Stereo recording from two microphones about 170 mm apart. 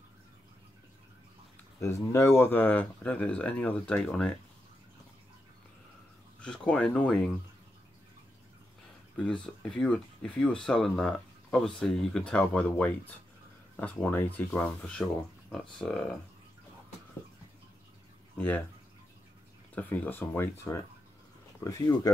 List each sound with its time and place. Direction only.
1.8 s speech: 15° left (ahead or behind)
6.4 s speech: 5° left (ahead or behind)
9.1 s speech: 5° left (ahead or behind)
19.7 s speech: 10° left (ahead or behind)